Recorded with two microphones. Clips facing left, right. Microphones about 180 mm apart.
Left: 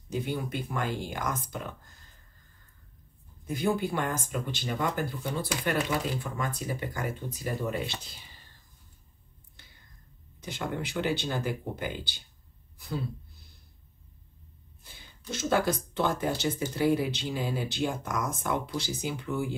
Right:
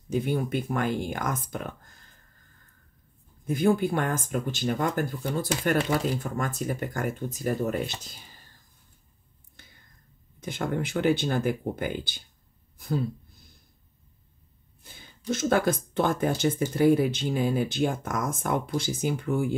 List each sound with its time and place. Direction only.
0.1 s speech: 50° right (ahead or behind)
3.4 s speech: 50° right (ahead or behind)
10.4 s speech: 50° right (ahead or behind)
14.8 s speech: 50° right (ahead or behind)